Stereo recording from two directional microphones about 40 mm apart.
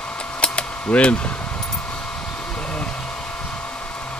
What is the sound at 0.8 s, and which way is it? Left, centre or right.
Speech, left.